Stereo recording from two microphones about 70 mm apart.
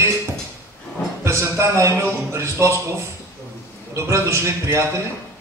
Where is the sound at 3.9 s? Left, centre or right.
Right.